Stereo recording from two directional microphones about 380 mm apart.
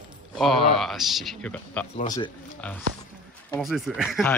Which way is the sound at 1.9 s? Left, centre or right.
Centre.